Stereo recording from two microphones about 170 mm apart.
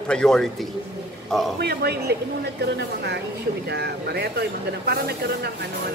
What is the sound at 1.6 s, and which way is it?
Speech, 70° right (ahead or behind).